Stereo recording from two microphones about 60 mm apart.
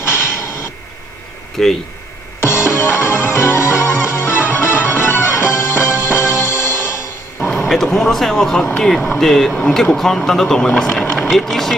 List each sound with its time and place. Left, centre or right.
0.0 s a sound: left
1.6 s speech: centre
2.4 s music: left
7.3 s speech: centre